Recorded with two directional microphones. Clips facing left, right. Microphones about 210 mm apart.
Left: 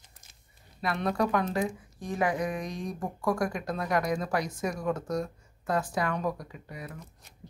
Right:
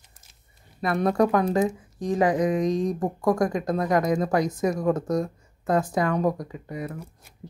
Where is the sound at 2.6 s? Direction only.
90° right.